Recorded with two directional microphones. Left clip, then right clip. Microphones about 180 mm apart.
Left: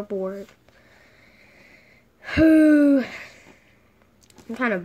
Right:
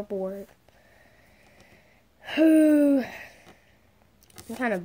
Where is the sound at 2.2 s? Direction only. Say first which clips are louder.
Left 3 dB; 40° left (ahead or behind).